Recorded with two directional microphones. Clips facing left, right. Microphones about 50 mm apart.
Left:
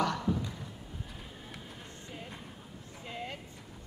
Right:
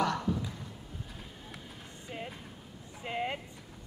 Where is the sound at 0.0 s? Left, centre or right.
Centre.